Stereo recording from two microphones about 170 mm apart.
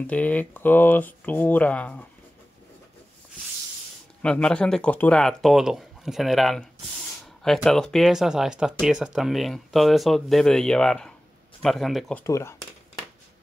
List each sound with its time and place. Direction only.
0.0 s speech: 10° left (ahead or behind)
4.2 s speech: 5° left (ahead or behind)
12.2 s speech: 15° left (ahead or behind)